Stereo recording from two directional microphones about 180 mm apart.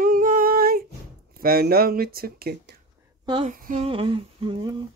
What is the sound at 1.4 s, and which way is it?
Speech, 55° right (ahead or behind).